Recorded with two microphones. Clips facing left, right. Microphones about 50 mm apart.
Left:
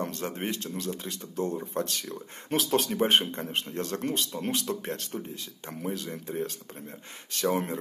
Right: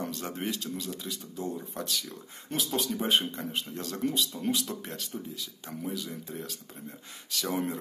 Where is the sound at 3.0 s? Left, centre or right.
Left.